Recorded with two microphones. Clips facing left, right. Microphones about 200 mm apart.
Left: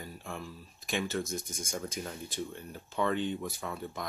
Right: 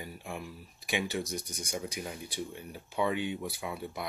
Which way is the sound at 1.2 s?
50° left (ahead or behind).